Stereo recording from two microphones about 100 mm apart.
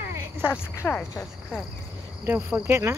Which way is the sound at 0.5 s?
25° left (ahead or behind).